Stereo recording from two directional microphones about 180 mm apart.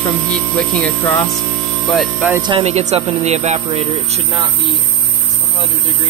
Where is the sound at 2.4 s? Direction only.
30° right (ahead or behind).